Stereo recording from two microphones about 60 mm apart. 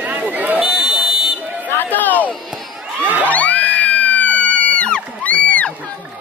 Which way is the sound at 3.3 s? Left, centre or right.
Left.